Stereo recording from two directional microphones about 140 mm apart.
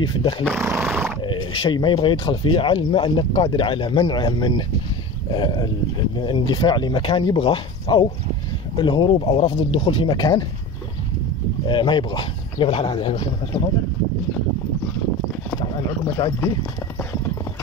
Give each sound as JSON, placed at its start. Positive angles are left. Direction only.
{"t": 0.0, "sound": "speech", "side_deg": 35}
{"t": 0.5, "sound": "speech", "side_deg": -15}
{"t": 1.2, "sound": "speech", "side_deg": 35}
{"t": 11.6, "sound": "speech", "side_deg": 35}
{"t": 16.2, "sound": "speech", "side_deg": 35}